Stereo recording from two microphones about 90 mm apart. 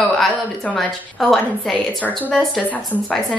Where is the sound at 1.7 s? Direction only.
15° left (ahead or behind).